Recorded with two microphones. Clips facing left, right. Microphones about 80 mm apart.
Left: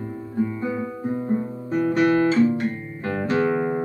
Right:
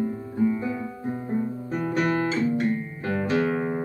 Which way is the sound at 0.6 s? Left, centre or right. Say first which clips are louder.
Left 3 dB; centre.